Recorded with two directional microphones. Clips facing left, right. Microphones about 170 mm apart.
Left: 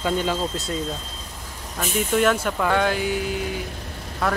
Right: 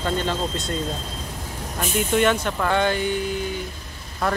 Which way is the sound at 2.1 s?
Centre (ahead or behind).